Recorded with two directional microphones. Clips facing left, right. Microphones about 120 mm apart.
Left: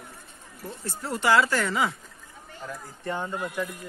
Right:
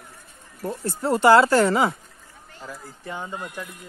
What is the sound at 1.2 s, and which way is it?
Speech, 35° right (ahead or behind).